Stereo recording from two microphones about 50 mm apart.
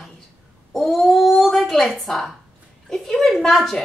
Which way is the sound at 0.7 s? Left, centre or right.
Centre.